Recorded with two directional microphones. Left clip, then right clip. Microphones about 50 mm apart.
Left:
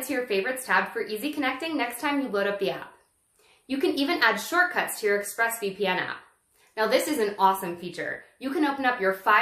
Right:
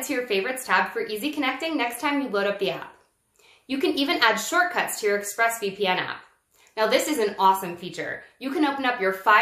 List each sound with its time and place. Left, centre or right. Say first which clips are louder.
0.1 s speech: right 1 dB; left
3.6 s speech: right 2 dB; left